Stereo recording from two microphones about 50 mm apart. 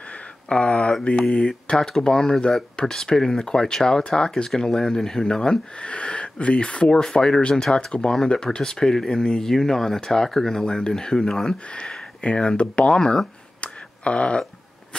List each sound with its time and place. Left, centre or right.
0.5 s speech: left
11.7 s speech: left
13.6 s a sound: left